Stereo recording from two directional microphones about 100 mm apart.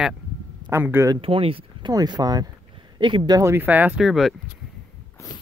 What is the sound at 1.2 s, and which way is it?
Speech, 65° right (ahead or behind).